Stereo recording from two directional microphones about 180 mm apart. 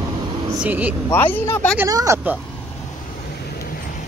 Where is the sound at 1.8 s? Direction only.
20° right (ahead or behind).